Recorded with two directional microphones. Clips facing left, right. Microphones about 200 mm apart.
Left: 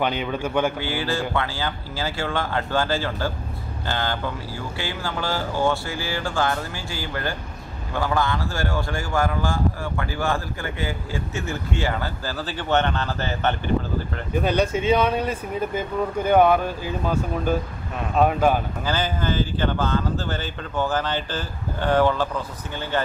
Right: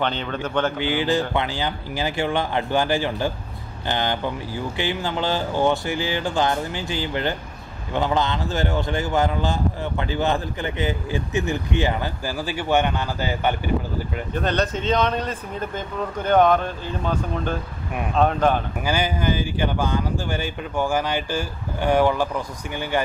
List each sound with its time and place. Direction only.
0.0 s speech: 10° left (ahead or behind)
0.7 s speech: 20° right (ahead or behind)
14.3 s speech: 10° left (ahead or behind)
18.9 s speech: 10° right (ahead or behind)